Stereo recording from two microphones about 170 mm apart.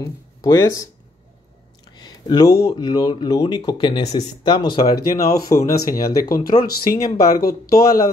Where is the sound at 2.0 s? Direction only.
25° left (ahead or behind).